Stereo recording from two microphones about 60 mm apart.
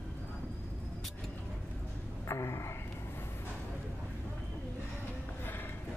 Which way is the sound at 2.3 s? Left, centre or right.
Left.